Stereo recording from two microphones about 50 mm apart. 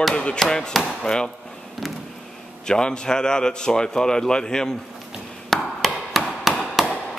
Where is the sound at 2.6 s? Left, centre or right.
Centre.